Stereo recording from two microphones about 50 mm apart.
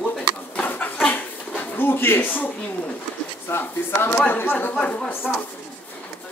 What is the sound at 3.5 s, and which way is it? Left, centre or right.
Speech, left.